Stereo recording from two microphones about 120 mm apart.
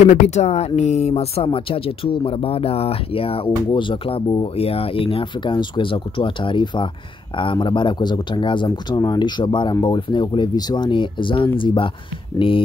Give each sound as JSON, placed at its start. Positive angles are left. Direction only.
{"t": 0.0, "sound": "speech", "side_deg": 80}